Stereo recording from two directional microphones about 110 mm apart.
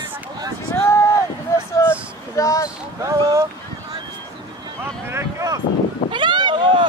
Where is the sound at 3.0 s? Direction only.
30° right (ahead or behind).